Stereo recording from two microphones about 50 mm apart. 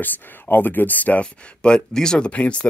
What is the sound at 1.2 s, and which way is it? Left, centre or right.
Speech, centre.